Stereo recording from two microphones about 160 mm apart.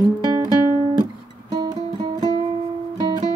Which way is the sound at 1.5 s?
25° right (ahead or behind).